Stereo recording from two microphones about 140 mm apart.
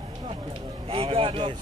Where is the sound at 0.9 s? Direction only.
40° right (ahead or behind).